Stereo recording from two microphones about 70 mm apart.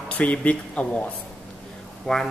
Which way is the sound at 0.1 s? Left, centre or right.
Centre.